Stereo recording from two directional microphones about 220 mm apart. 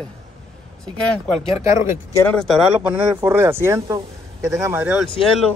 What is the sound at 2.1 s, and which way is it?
Speech, 5° left (ahead or behind).